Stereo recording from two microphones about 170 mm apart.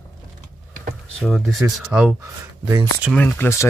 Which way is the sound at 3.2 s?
10° left (ahead or behind).